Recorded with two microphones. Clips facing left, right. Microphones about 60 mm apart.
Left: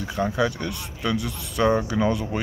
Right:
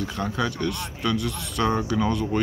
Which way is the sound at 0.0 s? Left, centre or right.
Centre.